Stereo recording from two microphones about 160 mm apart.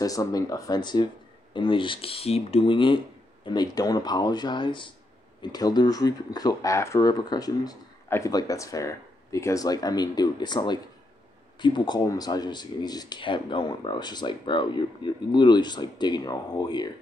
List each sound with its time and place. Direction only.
0.0 s speech: 20° left (ahead or behind)